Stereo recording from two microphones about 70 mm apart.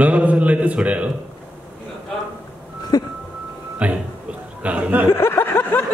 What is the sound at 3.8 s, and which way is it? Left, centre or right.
Music, right.